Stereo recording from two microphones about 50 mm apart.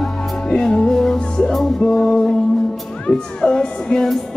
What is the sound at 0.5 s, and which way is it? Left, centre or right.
Music, centre.